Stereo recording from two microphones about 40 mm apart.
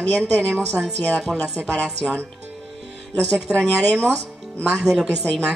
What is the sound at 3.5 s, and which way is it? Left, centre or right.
Speech, left.